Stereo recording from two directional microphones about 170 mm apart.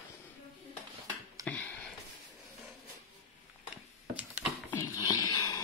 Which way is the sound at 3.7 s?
10° right (ahead or behind).